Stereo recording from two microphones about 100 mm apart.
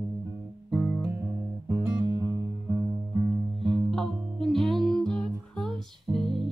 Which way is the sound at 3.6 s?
5° left (ahead or behind).